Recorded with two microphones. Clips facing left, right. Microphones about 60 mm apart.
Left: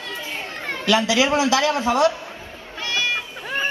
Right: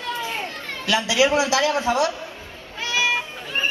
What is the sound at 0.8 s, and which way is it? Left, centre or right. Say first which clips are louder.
Speech: left 4 dB; left.